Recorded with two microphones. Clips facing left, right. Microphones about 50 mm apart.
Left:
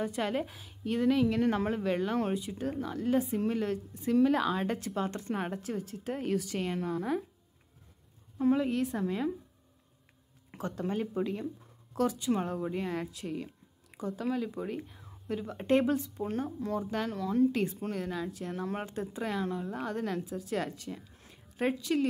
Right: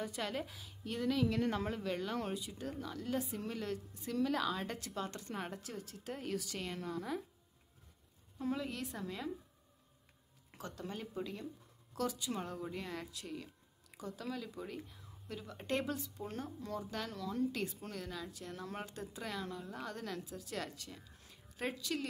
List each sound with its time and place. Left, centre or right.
0.0 s speech: left
8.4 s speech: left
10.5 s speech: left